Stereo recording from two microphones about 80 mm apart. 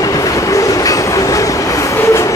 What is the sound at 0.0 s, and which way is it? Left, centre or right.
Train, left.